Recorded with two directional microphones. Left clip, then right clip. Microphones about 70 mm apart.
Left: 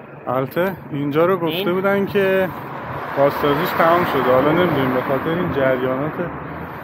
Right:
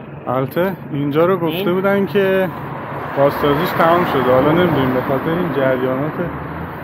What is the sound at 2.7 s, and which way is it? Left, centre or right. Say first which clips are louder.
Vehicle: right 2 dB; left.